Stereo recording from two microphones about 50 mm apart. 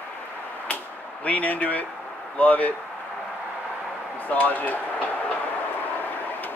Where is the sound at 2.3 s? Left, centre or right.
Left.